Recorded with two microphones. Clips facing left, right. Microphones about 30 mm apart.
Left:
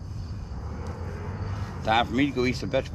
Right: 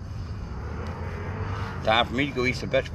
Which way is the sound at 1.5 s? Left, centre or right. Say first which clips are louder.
Right 4 dB; right.